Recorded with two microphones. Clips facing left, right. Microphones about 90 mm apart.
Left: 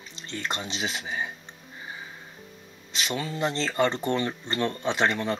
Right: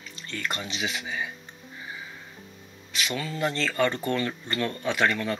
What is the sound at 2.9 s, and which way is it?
Speech, 25° left (ahead or behind).